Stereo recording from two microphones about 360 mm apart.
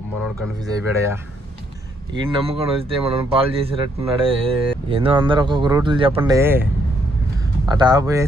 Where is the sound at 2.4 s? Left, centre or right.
Centre.